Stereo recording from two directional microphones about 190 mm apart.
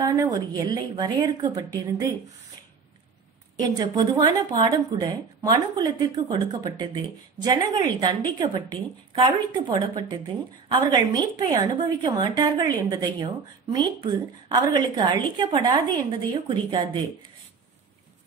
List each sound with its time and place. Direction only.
0.0 s a woman's voice: 20° right (ahead or behind)
3.5 s a woman's voice: 20° right (ahead or behind)